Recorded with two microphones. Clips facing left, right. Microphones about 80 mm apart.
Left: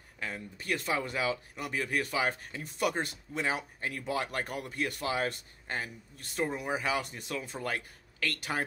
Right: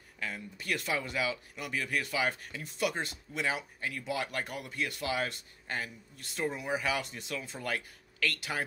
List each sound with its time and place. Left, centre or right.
0.2 s speech: left